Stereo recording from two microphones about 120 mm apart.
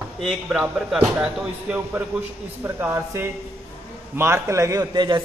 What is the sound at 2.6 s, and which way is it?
A man's voice, 20° right (ahead or behind).